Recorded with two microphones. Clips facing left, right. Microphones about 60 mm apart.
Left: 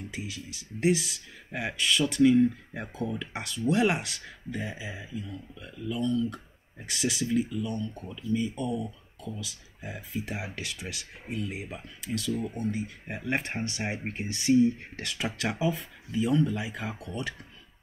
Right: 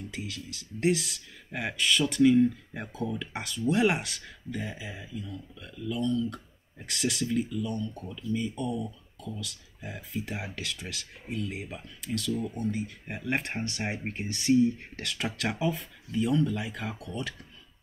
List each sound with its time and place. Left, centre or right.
0.1 s speech: centre
12.7 s speech: centre